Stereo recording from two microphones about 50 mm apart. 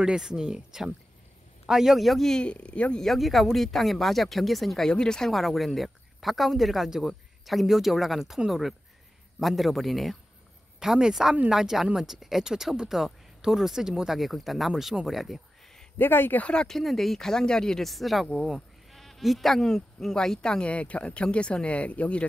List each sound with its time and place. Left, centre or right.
0.0 s speech: centre
2.3 s speech: left
3.0 s speech: centre
4.8 s speech: centre
5.3 s speech: centre
10.8 s speech: centre
14.1 s speech: centre
15.0 s a sound: centre
16.0 s speech: left
16.6 s speech: centre
20.6 s speech: left